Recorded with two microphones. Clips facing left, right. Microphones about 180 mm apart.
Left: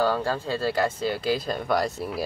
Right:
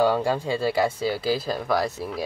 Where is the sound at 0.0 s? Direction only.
15° right (ahead or behind).